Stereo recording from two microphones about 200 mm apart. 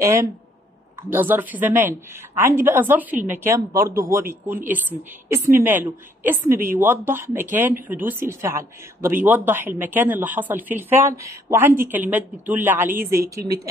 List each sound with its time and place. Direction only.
0.0 s a woman's voice: 15° right (ahead or behind)